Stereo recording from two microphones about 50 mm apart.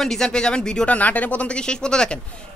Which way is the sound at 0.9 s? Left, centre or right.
Left.